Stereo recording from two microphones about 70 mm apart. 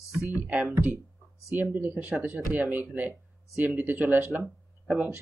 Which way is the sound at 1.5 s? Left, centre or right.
Right.